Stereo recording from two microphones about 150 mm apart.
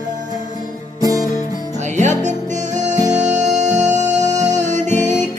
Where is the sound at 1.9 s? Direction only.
55° right (ahead or behind).